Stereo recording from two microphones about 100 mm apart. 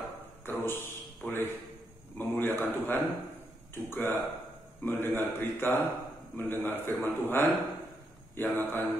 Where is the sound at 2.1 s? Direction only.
20° left (ahead or behind).